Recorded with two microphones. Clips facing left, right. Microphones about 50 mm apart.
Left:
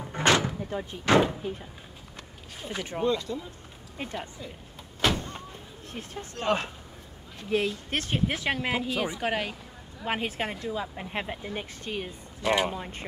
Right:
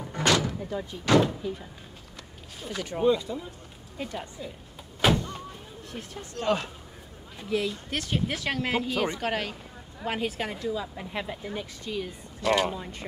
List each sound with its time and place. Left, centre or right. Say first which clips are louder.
0.1 s door: left 1 dB; left
1.4 s speech: right 1 dB; left
2.6 s speech: even; left
3.0 s speech: right 4 dB; centre
4.0 s speech: even; left
5.0 s vehicle: right 3 dB; centre
5.9 s speech: left 1 dB; left; by 9.6 s centre
10.0 s speech: even; left
12.4 s speech: right 1 dB; left